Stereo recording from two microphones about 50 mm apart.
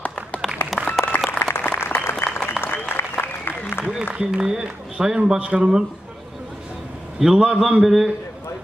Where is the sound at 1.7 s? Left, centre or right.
Left.